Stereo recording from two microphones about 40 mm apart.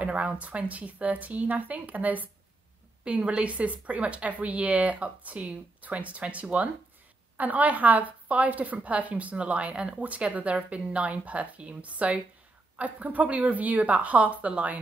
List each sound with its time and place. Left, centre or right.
0.0 s a woman's voice: right